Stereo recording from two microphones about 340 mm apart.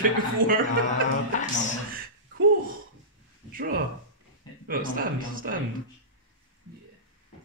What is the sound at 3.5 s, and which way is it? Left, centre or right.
A man's voice, right.